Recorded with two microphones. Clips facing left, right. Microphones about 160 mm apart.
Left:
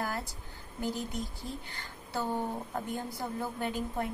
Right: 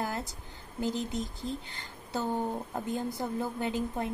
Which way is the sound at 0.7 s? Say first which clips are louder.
Right 3 dB; 20° right (ahead or behind).